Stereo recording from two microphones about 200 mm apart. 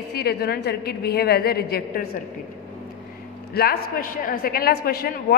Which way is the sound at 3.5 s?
50° left (ahead or behind).